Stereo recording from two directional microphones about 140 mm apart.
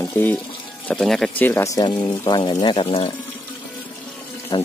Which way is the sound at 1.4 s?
20° left (ahead or behind).